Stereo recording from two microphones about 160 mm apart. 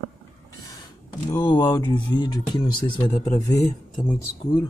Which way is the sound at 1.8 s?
30° left (ahead or behind).